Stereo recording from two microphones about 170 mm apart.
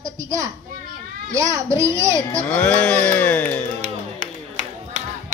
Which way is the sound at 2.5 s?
10° left (ahead or behind).